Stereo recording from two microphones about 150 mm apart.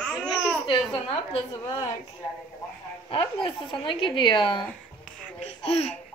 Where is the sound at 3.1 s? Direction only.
35° left (ahead or behind).